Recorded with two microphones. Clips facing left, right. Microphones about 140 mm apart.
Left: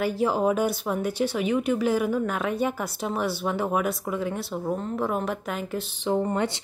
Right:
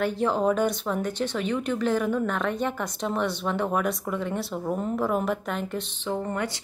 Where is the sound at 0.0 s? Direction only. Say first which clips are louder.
Left 1 dB; 5° left (ahead or behind).